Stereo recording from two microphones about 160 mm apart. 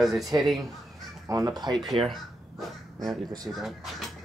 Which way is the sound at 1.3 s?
25° right (ahead or behind).